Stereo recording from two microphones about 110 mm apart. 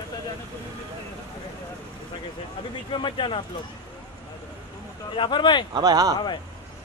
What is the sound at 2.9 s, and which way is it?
Speech, 50° left (ahead or behind).